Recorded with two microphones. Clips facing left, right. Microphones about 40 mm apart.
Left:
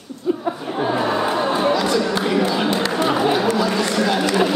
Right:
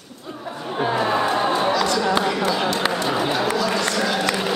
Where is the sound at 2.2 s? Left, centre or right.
Centre.